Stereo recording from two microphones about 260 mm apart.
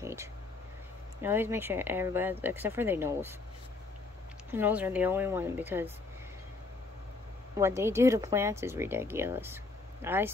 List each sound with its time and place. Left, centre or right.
0.0 s a sound: centre
1.2 s speech: centre
4.5 s speech: centre
7.5 s speech: centre